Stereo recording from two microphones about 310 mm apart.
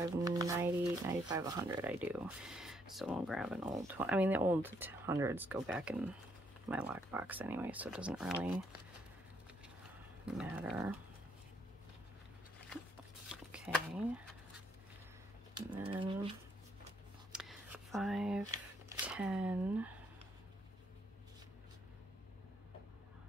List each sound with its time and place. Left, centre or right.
0.0 s speech: centre
10.2 s speech: centre
13.3 s a sound: centre
15.5 s speech: centre
17.3 s a sound: centre
18.4 s speech: centre